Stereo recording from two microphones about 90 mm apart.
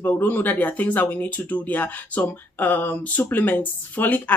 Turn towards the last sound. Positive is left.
turn(degrees=20)  # may be behind; listen again after turning